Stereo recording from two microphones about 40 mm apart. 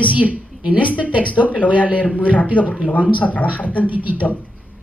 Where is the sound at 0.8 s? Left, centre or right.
Left.